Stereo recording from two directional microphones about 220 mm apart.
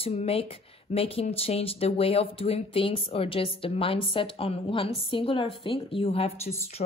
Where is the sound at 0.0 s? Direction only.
25° left (ahead or behind).